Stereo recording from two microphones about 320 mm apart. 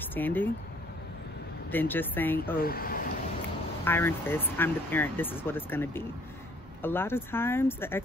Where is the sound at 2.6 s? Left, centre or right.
Left.